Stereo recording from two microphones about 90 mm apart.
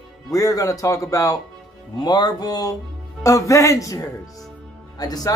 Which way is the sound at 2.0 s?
50° left (ahead or behind).